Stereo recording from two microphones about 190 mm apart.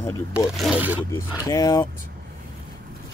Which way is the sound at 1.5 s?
20° left (ahead or behind).